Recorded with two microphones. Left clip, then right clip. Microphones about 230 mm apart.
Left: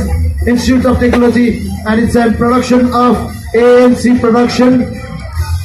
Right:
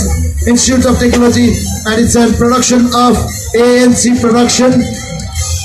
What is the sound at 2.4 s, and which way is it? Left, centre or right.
A man's voice, right.